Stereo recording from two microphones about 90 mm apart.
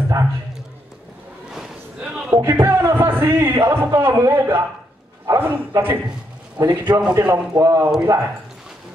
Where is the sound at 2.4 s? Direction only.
30° right (ahead or behind).